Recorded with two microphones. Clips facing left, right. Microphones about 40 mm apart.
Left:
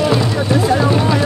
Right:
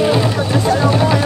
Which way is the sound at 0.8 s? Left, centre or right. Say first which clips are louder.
Right 1 dB; centre.